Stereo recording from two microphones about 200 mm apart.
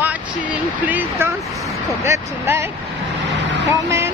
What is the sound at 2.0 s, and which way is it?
Vehicle, 10° right (ahead or behind).